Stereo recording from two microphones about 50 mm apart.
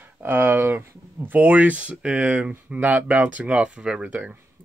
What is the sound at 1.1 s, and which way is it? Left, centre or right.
Speech, right.